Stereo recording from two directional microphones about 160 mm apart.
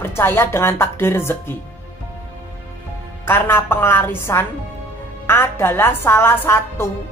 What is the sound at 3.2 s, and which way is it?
Speech, 15° left (ahead or behind).